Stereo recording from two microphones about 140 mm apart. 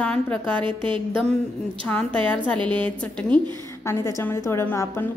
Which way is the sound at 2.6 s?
35° right (ahead or behind).